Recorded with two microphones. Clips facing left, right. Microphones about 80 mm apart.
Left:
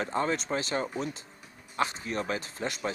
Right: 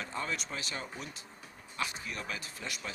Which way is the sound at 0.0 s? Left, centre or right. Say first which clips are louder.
Left 8 dB; left.